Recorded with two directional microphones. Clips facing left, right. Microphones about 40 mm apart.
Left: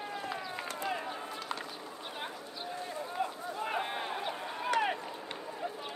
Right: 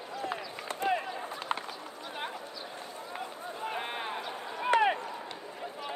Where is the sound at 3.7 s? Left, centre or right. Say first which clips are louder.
Even; centre.